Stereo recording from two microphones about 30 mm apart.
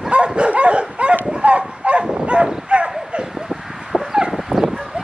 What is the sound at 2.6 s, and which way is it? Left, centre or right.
Bow-wow, right.